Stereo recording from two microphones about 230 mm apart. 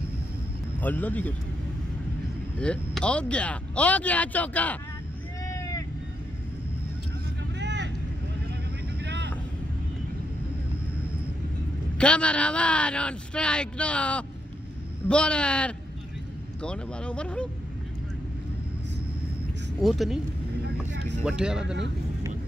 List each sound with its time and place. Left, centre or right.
0.7 s speech: centre
2.6 s speech: centre
5.5 s vehicle: centre
7.5 s vehicle: right
9.0 s vehicle: right
12.0 s speech: centre
19.8 s speech: centre
20.6 s vehicle: right
21.2 s speech: centre